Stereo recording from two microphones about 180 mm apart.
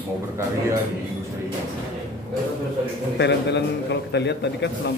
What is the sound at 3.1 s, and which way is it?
A man's voice, 75° left (ahead or behind).